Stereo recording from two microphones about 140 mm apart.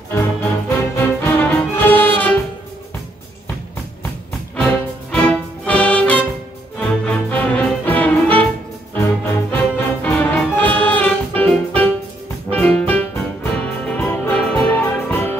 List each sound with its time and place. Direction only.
0.1 s music: 20° left (ahead or behind)
5.1 s music: 10° left (ahead or behind)